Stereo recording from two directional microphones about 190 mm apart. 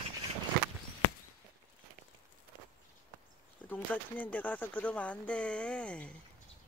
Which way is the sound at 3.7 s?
10° left (ahead or behind).